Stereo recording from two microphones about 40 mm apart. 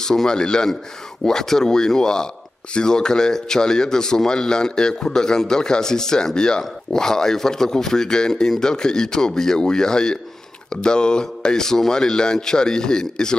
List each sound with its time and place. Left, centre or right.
0.0 s speech: centre